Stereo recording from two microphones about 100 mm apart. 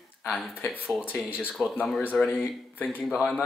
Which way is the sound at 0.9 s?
20° left (ahead or behind).